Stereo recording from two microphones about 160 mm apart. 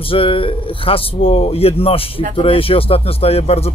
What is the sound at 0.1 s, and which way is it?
Speech, 35° left (ahead or behind).